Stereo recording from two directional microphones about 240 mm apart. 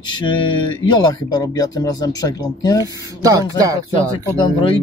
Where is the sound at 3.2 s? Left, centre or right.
Centre.